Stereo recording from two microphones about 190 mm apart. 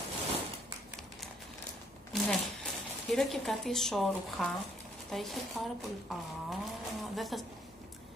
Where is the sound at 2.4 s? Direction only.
Centre (ahead or behind).